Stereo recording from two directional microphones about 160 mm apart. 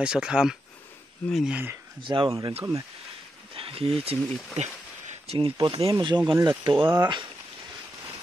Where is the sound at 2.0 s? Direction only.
30° right (ahead or behind).